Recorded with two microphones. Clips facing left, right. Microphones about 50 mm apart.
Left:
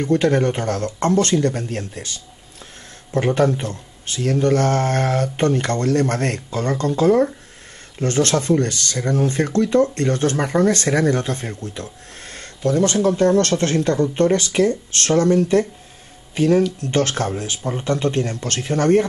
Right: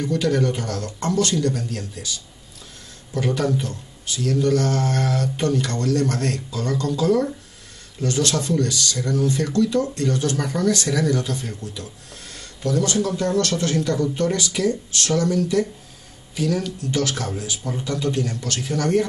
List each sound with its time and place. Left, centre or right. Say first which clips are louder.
0.0 s speech: left 4 dB; left